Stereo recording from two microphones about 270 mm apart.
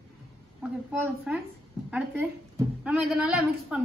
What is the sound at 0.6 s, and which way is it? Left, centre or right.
A woman's voice, centre.